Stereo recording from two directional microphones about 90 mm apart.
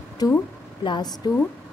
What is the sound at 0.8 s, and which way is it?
Speech, 55° left (ahead or behind).